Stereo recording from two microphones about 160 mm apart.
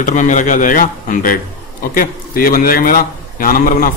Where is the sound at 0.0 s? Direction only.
50° left (ahead or behind).